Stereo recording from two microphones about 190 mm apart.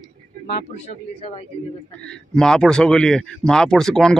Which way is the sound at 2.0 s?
5° left (ahead or behind).